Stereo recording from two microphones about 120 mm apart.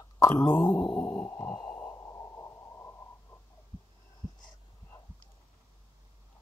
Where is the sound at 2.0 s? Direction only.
20° left (ahead or behind).